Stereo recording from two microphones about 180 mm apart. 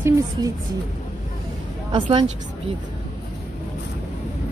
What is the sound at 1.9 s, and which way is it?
Speech, 25° right (ahead or behind).